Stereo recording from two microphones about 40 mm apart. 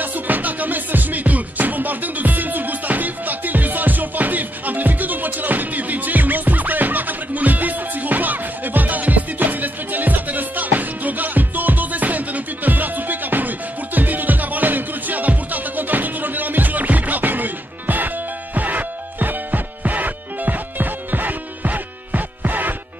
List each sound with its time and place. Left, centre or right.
0.0 s music: right